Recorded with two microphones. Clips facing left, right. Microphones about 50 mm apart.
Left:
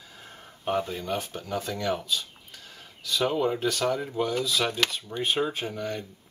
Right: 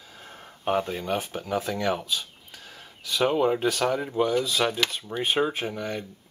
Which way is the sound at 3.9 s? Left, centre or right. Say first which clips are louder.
Right 3 dB; centre.